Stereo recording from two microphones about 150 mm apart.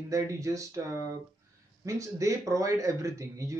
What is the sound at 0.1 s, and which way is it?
A man's voice, 20° right (ahead or behind).